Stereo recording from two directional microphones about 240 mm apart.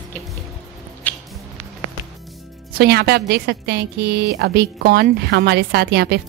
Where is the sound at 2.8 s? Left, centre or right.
Right.